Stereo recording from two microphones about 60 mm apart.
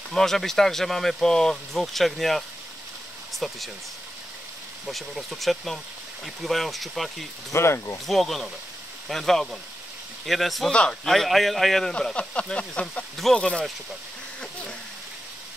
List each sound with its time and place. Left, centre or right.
0.1 s speech: centre
4.8 s speech: centre
7.5 s speech: left
8.1 s speech: centre
10.7 s speech: centre
11.1 s speech: centre
12.0 s speech: centre